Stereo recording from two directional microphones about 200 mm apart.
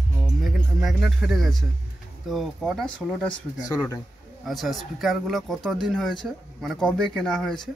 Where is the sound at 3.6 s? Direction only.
15° left (ahead or behind).